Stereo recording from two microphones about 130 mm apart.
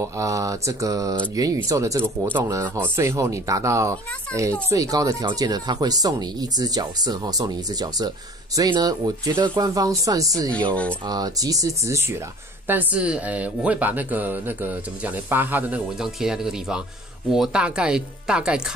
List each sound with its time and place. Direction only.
0.0 s speech: 25° right (ahead or behind)
10.7 s speech: 10° left (ahead or behind)
11.1 s speech: 30° right (ahead or behind)
12.6 s speech: 10° right (ahead or behind)
16.0 s speech: 5° right (ahead or behind)